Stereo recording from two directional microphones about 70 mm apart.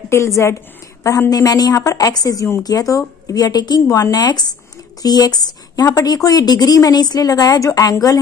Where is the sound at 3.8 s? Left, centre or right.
Left.